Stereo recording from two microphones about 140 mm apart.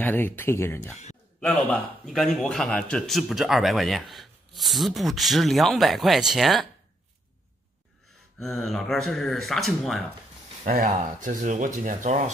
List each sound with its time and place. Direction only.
0.0 s speech: 15° left (ahead or behind)
1.4 s a man's voice: 5° left (ahead or behind)
8.4 s a man's voice: centre (ahead or behind)
10.7 s speech: 65° right (ahead or behind)